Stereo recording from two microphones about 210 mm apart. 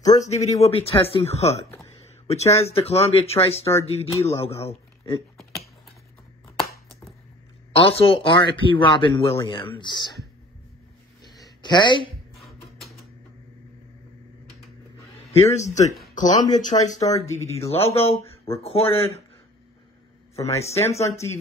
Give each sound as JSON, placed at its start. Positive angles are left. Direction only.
{"t": 0.0, "sound": "speech", "side_deg": 35}
{"t": 7.7, "sound": "speech", "side_deg": 25}
{"t": 11.2, "sound": "a sound", "side_deg": 20}
{"t": 12.4, "sound": "a sound", "side_deg": 0}
{"t": 15.5, "sound": "speech", "side_deg": 35}
{"t": 16.2, "sound": "speech", "side_deg": 20}
{"t": 16.5, "sound": "speech", "side_deg": 35}
{"t": 20.3, "sound": "speech", "side_deg": 30}